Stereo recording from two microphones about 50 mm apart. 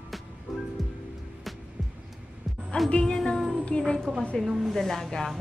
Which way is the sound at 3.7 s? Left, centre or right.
Centre.